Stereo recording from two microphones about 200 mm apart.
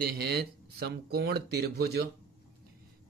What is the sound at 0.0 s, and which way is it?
Speech, 50° right (ahead or behind).